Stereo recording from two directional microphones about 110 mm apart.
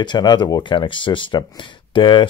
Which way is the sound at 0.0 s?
40° left (ahead or behind).